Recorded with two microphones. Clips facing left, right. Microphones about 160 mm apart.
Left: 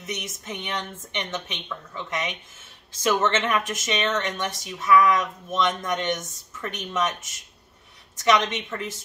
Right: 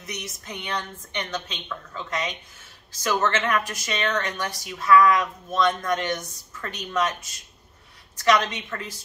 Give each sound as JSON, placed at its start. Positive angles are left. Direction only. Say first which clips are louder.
{"t": 0.0, "sound": "speech", "louder": "left 3 dB", "side_deg": 20}